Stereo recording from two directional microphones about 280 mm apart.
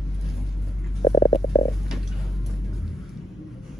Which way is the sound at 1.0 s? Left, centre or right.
Centre.